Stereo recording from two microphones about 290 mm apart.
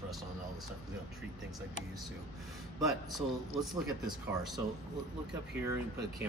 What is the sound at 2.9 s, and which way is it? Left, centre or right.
Speech, centre.